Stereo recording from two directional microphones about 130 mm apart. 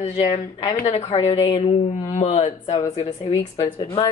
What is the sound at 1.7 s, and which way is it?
Speech, 55° left (ahead or behind).